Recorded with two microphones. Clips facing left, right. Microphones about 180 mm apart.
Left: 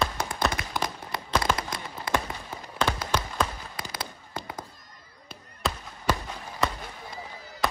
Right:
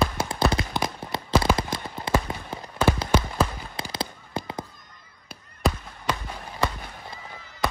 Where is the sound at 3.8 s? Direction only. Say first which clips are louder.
Right 7 dB; 30° right (ahead or behind).